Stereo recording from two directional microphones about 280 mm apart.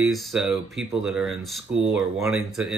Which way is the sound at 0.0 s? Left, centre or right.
Centre.